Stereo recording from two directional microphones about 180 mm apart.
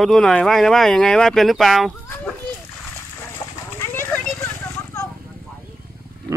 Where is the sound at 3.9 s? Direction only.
10° left (ahead or behind).